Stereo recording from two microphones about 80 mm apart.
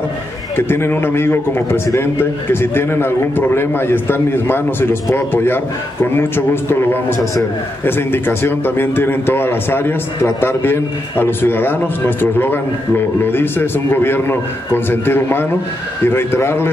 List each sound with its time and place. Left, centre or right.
0.6 s a man's voice: left